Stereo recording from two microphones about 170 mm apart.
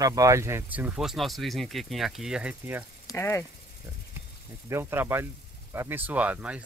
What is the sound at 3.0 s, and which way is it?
Speech, 15° left (ahead or behind).